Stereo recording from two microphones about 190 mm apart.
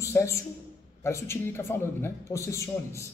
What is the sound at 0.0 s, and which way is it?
A man's voice, 15° left (ahead or behind).